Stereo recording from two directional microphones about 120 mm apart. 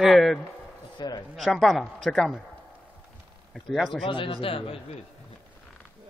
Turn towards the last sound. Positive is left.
turn(degrees=50)  # may be behind; listen again after turning